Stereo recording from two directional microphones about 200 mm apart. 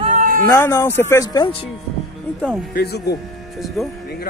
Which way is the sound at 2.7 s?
50° left (ahead or behind).